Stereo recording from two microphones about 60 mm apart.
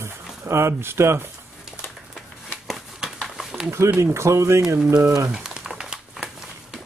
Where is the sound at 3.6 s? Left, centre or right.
Right.